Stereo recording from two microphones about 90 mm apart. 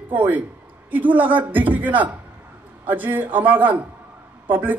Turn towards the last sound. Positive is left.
turn(degrees=-20)  # may be behind; listen again after turning